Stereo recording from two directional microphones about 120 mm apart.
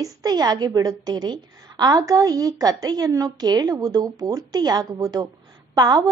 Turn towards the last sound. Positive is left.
turn(degrees=-35)  # may be behind; listen again after turning